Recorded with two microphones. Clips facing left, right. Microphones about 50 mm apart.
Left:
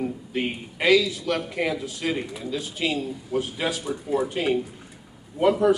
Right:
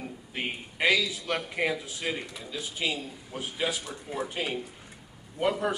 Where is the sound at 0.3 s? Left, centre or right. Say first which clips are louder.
Left 6 dB; centre.